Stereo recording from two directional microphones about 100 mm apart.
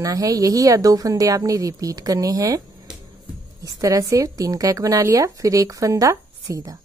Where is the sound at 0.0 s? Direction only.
35° right (ahead or behind).